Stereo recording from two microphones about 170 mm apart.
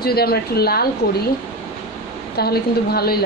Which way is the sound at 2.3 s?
65° left (ahead or behind).